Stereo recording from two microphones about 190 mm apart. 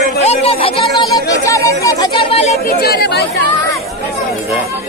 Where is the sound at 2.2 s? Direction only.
30° left (ahead or behind).